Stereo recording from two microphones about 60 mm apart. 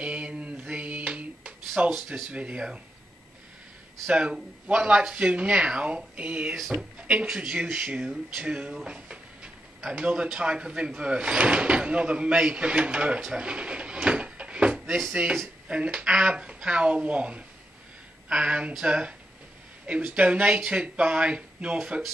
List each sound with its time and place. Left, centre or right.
0.0 s music: centre
1.8 s speech: right
4.1 s speech: centre
6.5 s speech: centre
7.0 s a sound: centre
7.7 s speech: right
8.0 s a man's voice: centre
14.0 s a sound: centre
15.2 s a man's voice: centre